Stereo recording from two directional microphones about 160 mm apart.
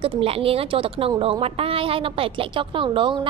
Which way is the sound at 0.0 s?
35° right (ahead or behind).